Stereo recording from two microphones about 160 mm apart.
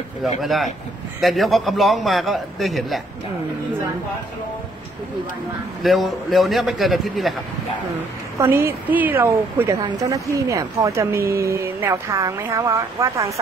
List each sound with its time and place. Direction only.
0.4 s a man's voice: centre (ahead or behind)
5.8 s a man's voice: centre (ahead or behind)
8.4 s speech: 15° right (ahead or behind)